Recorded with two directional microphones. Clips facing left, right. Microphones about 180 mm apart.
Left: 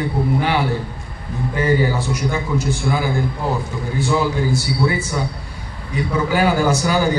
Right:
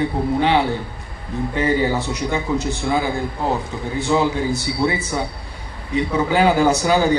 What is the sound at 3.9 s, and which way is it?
A man's voice, 20° right (ahead or behind).